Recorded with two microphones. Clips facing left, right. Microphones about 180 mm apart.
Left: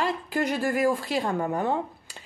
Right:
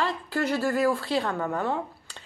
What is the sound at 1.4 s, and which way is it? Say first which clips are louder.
Speech: left 2 dB; 20° left (ahead or behind).